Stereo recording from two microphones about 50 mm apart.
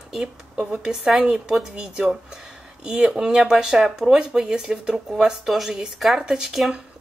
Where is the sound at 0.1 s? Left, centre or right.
Centre.